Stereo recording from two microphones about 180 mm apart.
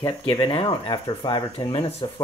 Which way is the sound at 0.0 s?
30° left (ahead or behind).